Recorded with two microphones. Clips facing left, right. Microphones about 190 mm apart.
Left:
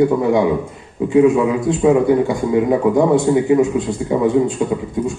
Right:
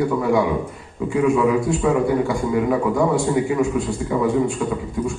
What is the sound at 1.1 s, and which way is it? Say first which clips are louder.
A man's voice: left 4 dB; 20° left (ahead or behind).